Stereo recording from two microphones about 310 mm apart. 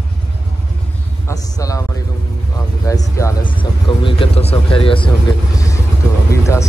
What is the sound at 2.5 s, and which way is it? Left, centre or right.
Vehicle, centre.